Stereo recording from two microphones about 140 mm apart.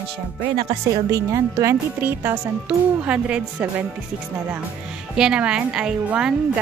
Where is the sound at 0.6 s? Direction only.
35° right (ahead or behind).